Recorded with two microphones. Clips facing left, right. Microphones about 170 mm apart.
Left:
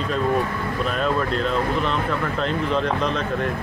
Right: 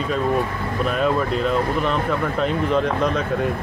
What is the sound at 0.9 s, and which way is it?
Speech, 5° right (ahead or behind).